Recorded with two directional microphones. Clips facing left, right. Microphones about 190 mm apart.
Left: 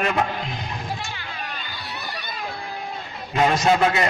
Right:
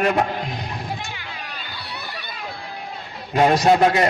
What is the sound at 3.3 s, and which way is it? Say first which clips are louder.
Speech: right 3 dB; 35° right (ahead or behind).